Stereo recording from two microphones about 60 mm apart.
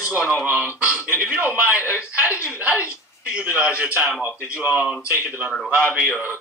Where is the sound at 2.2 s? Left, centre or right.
Right.